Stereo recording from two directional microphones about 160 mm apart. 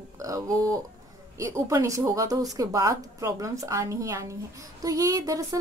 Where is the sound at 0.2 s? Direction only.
20° right (ahead or behind).